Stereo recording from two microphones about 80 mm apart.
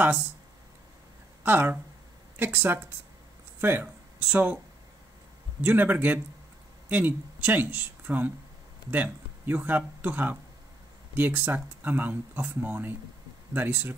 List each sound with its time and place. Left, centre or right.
1.4 s speech: right
5.6 s speech: right